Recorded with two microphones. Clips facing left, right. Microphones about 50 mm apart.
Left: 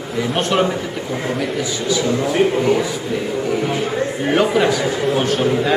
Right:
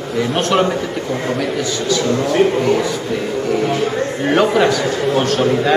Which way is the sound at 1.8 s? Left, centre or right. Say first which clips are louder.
Right 1 dB; centre.